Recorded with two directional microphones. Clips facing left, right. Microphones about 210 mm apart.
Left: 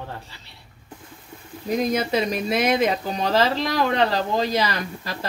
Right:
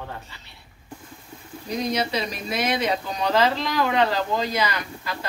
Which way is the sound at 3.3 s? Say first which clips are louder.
Even; 40° left (ahead or behind).